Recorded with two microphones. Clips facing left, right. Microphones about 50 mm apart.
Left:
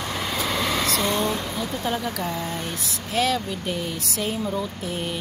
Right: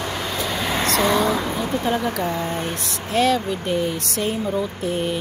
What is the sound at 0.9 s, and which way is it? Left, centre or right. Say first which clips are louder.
Speech: right 5 dB; right.